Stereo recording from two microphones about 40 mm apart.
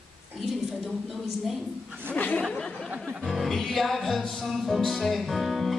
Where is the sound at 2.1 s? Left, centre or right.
Left.